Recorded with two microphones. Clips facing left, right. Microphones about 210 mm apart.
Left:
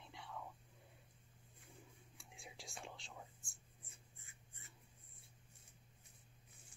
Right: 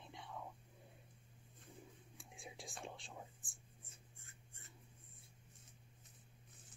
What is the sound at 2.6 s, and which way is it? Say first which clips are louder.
Whispering: right 2 dB; 15° right (ahead or behind).